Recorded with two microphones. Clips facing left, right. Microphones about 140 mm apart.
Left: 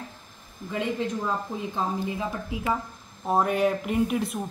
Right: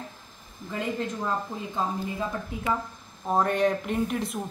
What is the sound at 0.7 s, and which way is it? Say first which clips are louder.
Speech: left 2 dB; centre (ahead or behind).